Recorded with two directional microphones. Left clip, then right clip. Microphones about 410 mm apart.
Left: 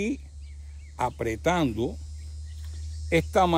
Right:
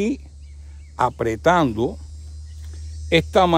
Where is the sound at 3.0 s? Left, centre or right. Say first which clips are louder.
Right 6 dB; centre.